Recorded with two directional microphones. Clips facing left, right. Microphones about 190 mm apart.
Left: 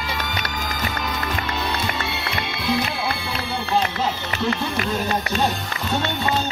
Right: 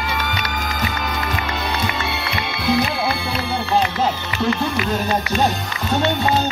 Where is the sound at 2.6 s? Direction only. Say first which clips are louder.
Right 5 dB; 60° right (ahead or behind).